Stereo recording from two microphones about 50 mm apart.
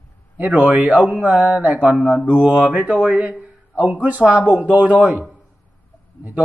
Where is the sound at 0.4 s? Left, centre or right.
Right.